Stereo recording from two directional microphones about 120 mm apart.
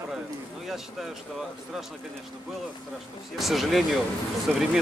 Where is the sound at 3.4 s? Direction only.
Centre (ahead or behind).